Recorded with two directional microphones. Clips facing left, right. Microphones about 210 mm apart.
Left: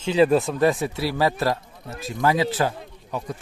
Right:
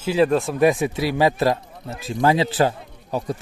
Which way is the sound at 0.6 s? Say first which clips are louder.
Right 3 dB; 15° right (ahead or behind).